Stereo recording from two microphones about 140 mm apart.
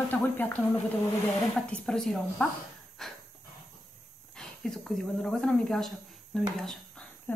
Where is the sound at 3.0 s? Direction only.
Centre (ahead or behind).